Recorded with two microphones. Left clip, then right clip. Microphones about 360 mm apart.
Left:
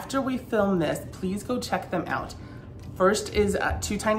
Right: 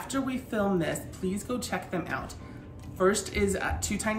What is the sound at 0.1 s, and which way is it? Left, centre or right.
A woman's voice, centre.